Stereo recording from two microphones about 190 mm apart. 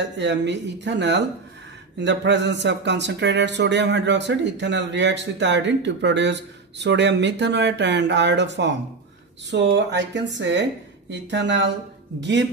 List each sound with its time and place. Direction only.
0.0 s speech: 70° right (ahead or behind)